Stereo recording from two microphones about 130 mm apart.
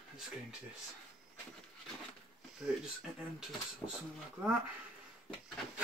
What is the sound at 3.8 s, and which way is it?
Speech, 30° left (ahead or behind).